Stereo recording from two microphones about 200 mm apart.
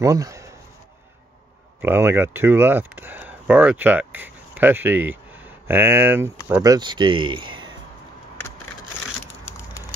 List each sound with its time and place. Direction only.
0.0 s speech: 15° right (ahead or behind)
1.8 s speech: 10° right (ahead or behind)
9.4 s a sound: 10° left (ahead or behind)